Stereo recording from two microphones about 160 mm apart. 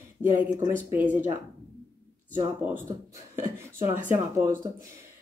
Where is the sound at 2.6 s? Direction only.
10° right (ahead or behind).